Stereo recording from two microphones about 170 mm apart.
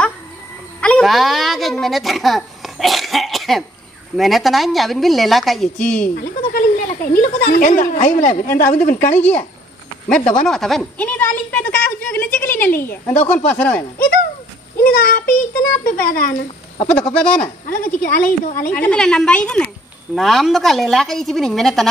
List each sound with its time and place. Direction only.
0.7 s a sound: 5° left (ahead or behind)
4.2 s a woman's voice: centre (ahead or behind)
5.9 s speech: 55° left (ahead or behind)
9.1 s a woman's voice: 10° left (ahead or behind)
14.8 s a child's voice: 55° left (ahead or behind)
17.4 s speech: 55° left (ahead or behind)
18.7 s a woman's voice: 10° left (ahead or behind)